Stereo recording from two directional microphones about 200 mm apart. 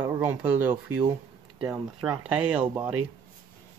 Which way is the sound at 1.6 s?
25° right (ahead or behind).